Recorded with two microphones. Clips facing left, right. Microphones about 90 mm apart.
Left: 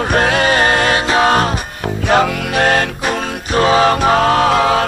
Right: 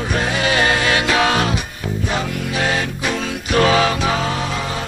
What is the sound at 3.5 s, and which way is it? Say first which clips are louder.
Music: left 3 dB; 35° left (ahead or behind).